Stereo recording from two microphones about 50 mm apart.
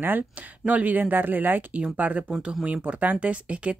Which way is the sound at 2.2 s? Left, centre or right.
Centre.